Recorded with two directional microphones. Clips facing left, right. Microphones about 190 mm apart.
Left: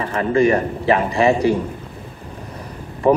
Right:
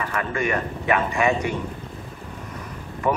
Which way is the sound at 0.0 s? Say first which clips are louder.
Left 9 dB; 30° left (ahead or behind).